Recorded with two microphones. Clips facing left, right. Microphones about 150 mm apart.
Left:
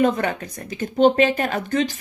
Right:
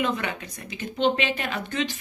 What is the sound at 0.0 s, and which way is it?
A woman's voice, 45° left (ahead or behind).